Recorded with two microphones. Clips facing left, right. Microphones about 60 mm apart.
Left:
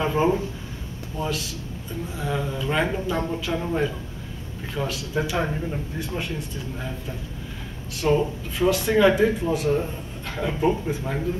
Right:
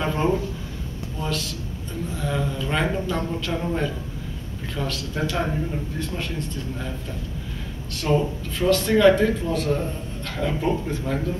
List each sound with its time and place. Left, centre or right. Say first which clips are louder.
0.0 s a sound: left 1 dB; centre
1.2 s speech: even; centre
8.0 s speech: left 1 dB; centre